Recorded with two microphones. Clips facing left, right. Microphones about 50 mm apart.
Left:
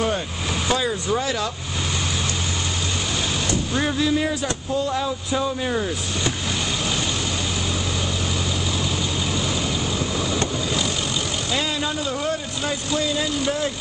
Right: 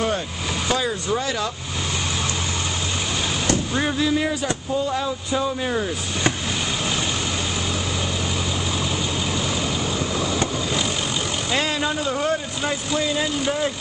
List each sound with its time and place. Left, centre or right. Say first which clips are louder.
0.7 s speech: even; centre
3.7 s speech: left 3 dB; centre
11.8 s speech: right 2 dB; right